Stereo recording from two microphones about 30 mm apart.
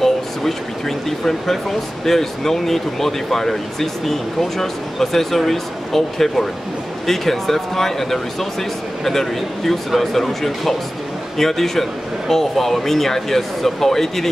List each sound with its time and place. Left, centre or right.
0.0 s speech: centre